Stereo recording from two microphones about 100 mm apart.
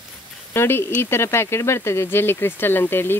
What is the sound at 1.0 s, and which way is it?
Speech, 25° left (ahead or behind).